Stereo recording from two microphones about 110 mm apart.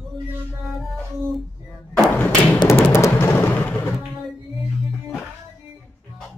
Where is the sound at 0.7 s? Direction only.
Centre (ahead or behind).